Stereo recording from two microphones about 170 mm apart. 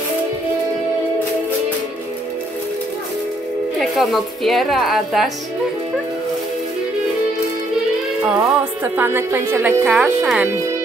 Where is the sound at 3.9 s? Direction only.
Centre (ahead or behind).